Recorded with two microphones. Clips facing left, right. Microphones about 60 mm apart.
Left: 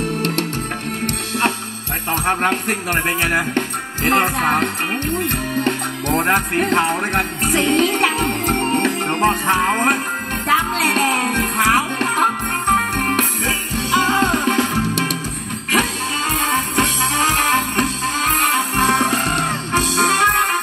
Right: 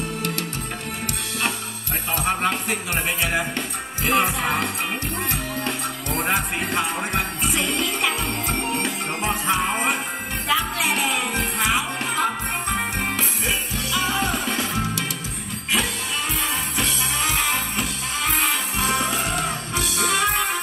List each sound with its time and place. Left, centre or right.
2.2 s music: left